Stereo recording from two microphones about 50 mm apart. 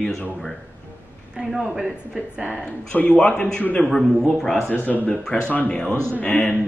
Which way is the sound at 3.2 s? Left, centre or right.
Left.